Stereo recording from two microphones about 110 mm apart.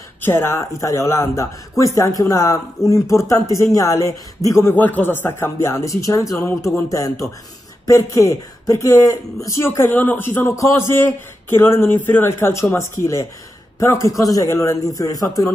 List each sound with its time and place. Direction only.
0.2 s a man's voice: 20° left (ahead or behind)